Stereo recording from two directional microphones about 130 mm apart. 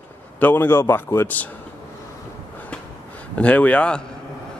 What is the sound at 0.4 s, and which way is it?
A man's voice, 15° left (ahead or behind).